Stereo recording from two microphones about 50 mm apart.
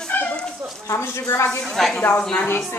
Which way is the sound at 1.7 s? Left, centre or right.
Centre.